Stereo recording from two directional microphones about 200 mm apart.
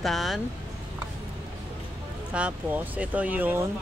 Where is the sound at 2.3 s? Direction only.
5° right (ahead or behind).